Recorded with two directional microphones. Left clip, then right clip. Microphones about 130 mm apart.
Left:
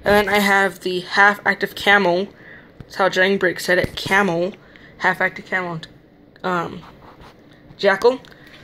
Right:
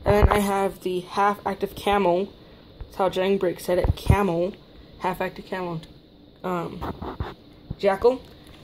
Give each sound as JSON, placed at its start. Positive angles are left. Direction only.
{"t": 0.0, "sound": "speech", "side_deg": -5}
{"t": 5.2, "sound": "a woman's voice", "side_deg": -45}
{"t": 6.4, "sound": "speech", "side_deg": -10}
{"t": 7.8, "sound": "speech", "side_deg": -5}